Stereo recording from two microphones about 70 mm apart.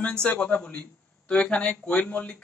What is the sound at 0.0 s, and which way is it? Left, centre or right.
Speech, centre.